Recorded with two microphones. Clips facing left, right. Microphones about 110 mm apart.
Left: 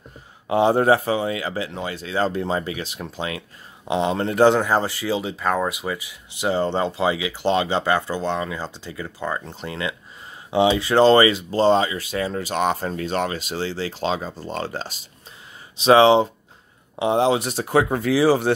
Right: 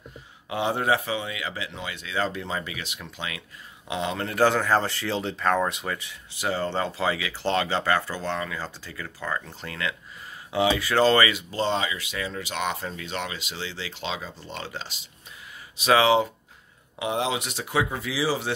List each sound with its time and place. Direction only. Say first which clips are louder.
0.5 s speech: left 8 dB; 35° left (ahead or behind); by 6.1 s 10° left (ahead or behind)
6.3 s speech: left 5 dB; 20° left (ahead or behind); by 15.0 s 40° left (ahead or behind)
15.8 s speech: left 6 dB; 30° left (ahead or behind); by 18.5 s 50° left (ahead or behind)